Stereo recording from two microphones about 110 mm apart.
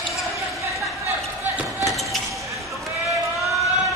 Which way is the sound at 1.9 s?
Centre (ahead or behind).